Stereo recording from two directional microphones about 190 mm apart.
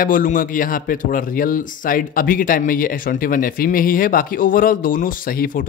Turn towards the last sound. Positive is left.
turn(degrees=50)  # may be behind; listen again after turning